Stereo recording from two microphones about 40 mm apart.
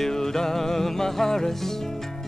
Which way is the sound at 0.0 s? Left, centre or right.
Centre.